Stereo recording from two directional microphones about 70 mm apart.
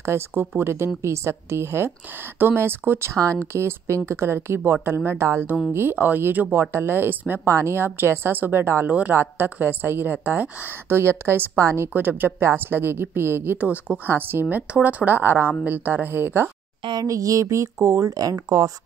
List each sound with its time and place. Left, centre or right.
0.0 s a woman's voice: right
3.5 s a woman's voice: right
7.4 s a woman's voice: right
11.9 s a woman's voice: right
13.6 s speech: right
17.1 s speech: right